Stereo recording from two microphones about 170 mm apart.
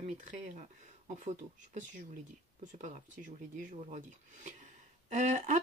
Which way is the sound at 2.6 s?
50° right (ahead or behind).